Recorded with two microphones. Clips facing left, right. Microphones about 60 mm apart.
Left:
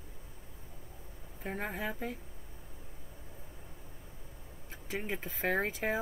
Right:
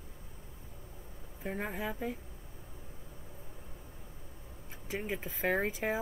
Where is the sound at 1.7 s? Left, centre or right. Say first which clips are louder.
Even; centre.